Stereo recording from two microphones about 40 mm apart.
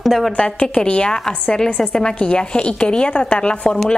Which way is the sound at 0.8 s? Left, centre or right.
Left.